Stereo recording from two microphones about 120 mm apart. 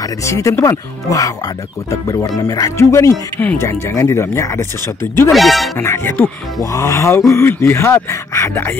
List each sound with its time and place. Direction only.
0.0 s speech: 25° left (ahead or behind)
5.3 s speech: centre (ahead or behind)
5.8 s speech: 20° left (ahead or behind)